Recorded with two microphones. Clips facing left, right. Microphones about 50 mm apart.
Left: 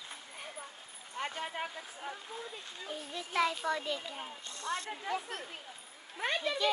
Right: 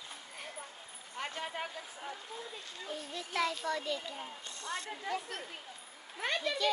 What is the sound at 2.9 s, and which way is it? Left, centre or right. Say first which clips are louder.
A child's voice: left 1 dB; centre.